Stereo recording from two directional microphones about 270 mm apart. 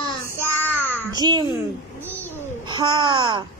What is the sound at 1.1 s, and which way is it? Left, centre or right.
Speech, centre.